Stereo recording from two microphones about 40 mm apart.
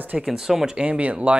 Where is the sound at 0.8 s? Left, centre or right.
Right.